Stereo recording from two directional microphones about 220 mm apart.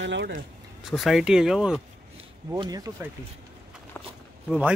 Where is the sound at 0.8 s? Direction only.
Centre (ahead or behind).